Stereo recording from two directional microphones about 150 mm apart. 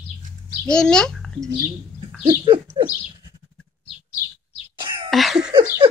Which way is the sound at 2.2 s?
35° right (ahead or behind).